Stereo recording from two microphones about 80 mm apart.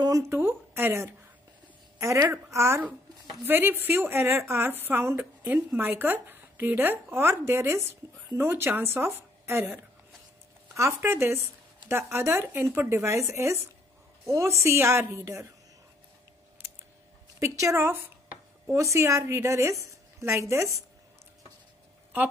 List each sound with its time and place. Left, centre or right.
0.3 s a woman's voice: right
17.4 s a woman's voice: right